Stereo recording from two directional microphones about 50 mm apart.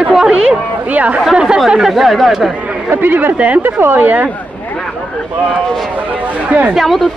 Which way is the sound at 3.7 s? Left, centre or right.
Right.